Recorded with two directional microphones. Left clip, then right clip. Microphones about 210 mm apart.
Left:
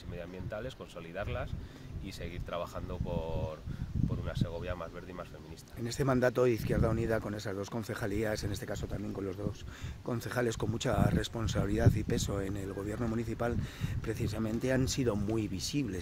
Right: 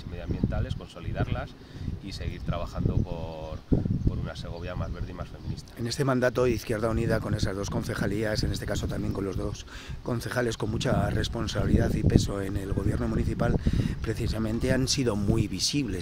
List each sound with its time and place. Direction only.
1.1 s speech: 20° left (ahead or behind)
5.8 s speech: 5° right (ahead or behind)